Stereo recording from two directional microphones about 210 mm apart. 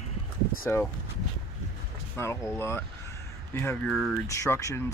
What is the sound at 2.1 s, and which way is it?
Speech, 10° left (ahead or behind).